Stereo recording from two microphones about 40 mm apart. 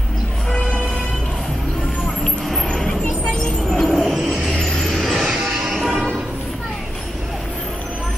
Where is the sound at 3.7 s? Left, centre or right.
Centre.